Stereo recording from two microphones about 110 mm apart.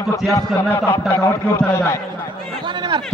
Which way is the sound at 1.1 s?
25° left (ahead or behind).